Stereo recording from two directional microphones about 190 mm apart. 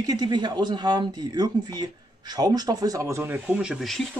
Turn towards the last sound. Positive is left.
turn(degrees=0)  # may be behind; listen again after turning